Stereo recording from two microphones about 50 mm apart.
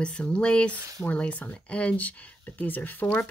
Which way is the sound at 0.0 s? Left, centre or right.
Left.